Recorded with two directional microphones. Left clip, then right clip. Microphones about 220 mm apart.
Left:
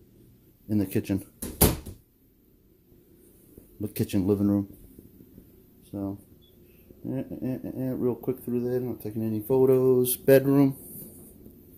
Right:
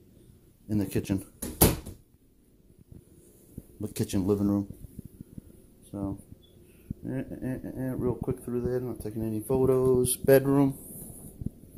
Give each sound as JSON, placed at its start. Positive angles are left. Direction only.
{"t": 0.7, "sound": "speech", "side_deg": 30}
{"t": 3.8, "sound": "speech", "side_deg": 35}
{"t": 5.9, "sound": "speech", "side_deg": 25}